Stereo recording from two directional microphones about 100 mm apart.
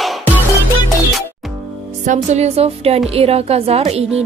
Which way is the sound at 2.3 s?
90° right.